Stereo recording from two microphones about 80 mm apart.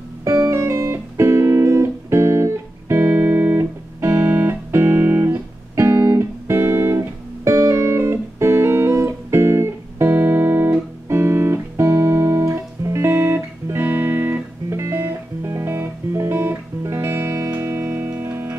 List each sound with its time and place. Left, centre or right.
0.2 s music: right